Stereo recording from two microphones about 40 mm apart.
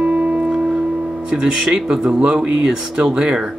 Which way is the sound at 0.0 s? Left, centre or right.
Right.